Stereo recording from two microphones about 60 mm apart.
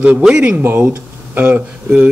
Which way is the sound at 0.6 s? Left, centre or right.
Right.